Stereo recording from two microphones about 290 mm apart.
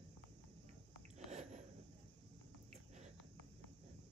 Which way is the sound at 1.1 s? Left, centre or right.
Right.